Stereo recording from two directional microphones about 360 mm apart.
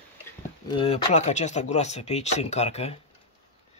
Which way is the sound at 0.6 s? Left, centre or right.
Centre.